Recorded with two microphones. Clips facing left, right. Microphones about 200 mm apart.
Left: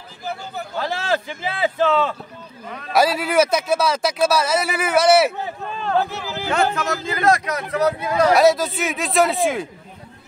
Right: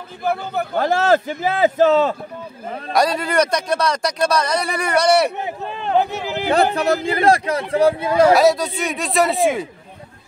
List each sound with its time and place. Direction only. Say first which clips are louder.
0.2 s a man's voice: right 8 dB; 55° right (ahead or behind); by 2.1 s 40° right (ahead or behind)
2.9 s speech: even; 5° left (ahead or behind)
5.9 s speech: right 3 dB; 20° right (ahead or behind)
6.5 s speech: right 4 dB; 35° right (ahead or behind)
8.3 s speech: right 1 dB; centre (ahead or behind)